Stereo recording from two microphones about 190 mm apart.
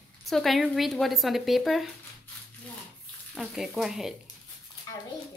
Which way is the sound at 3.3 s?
Centre (ahead or behind).